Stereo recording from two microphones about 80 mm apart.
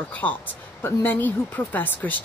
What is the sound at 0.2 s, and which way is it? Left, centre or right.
Speech, left.